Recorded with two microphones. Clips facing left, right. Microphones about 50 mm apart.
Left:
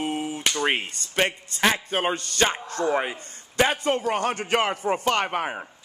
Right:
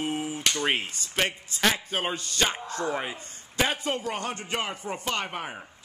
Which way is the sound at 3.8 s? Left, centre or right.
Left.